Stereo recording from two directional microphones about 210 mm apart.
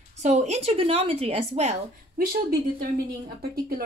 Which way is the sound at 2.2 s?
45° right (ahead or behind).